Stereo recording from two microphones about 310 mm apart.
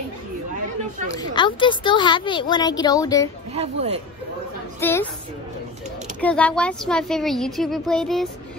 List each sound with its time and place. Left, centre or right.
1.1 s a woman's voice: centre
3.5 s speech: centre
4.7 s a woman's voice: centre
6.2 s a woman's voice: centre